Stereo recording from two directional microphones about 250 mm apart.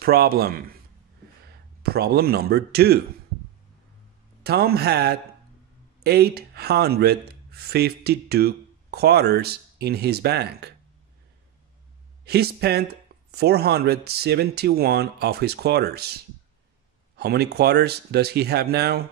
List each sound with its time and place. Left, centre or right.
0.0 s speech: right
1.8 s speech: right
4.4 s speech: right
12.3 s speech: right
17.2 s speech: right